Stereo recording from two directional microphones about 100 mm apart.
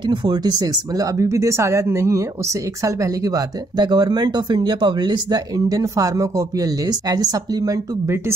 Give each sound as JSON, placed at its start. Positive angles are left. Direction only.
{"t": 0.0, "sound": "speech", "side_deg": -50}